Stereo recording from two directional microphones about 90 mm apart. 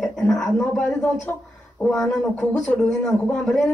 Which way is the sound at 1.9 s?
5° left (ahead or behind).